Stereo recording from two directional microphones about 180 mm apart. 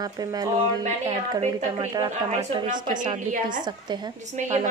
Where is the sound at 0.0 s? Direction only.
20° right (ahead or behind).